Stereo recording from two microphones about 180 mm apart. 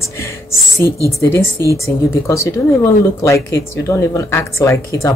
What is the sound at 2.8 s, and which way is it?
Speech, 15° left (ahead or behind).